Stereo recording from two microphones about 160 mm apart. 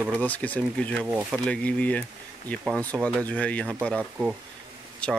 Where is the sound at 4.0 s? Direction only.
10° right (ahead or behind).